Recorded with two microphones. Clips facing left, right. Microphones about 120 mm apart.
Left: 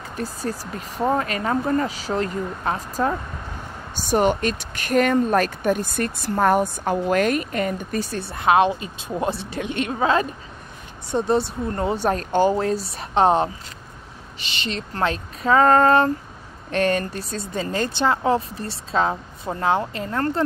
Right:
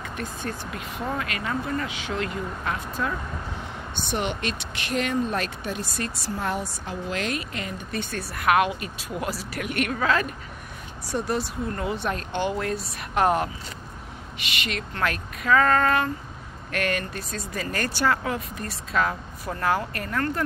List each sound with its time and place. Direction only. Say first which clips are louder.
0.1 s speech: left 6 dB; 35° left (ahead or behind)